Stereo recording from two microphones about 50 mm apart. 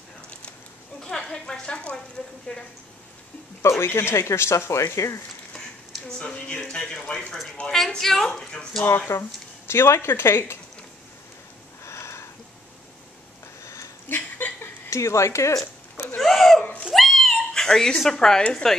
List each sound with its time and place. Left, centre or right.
1.0 s a sound: centre
2.5 s a woman's voice: left
3.8 s speech: left
6.0 s speech: centre
7.6 s a woman's voice: left
8.0 s speech: centre
8.9 s speech: left
11.8 s a sound: left
14.0 s chuckle: left
14.9 s speech: left
16.2 s a sound: centre
16.9 s cat: centre
18.1 s speech: centre